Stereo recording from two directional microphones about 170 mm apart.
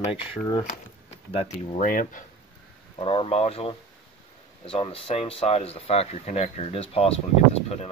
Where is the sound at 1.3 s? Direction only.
35° left (ahead or behind).